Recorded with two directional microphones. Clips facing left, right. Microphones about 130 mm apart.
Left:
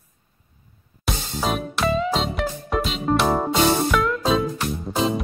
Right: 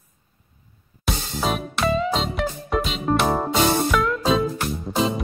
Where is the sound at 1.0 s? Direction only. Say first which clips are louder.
Even; centre (ahead or behind).